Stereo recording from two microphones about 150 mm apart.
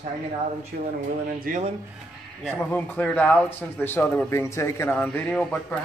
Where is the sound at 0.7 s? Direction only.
90° right.